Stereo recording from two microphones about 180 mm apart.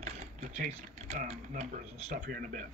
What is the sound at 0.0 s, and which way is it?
Speech, 40° right (ahead or behind).